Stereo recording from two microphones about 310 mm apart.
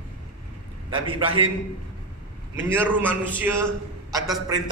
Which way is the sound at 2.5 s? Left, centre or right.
Centre.